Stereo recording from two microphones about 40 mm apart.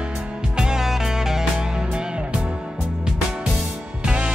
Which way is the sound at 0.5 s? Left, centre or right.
Centre.